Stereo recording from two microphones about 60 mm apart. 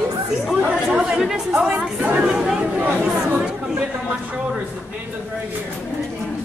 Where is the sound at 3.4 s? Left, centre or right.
Centre.